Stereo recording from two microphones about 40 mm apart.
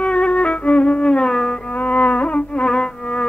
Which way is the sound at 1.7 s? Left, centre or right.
Left.